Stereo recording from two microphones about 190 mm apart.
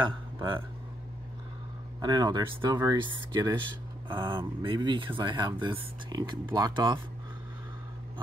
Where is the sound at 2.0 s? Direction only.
20° right (ahead or behind).